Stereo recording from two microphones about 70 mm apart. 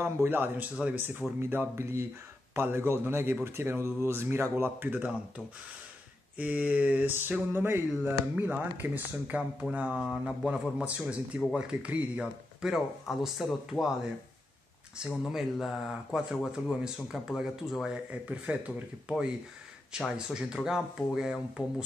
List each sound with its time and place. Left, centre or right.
0.0 s speech: right
6.3 s speech: right
12.6 s speech: centre
15.0 s speech: centre
18.1 s speech: centre